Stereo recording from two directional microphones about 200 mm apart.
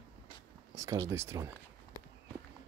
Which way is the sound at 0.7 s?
15° right (ahead or behind).